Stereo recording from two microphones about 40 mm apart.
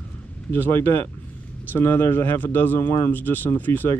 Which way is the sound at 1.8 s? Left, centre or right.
Left.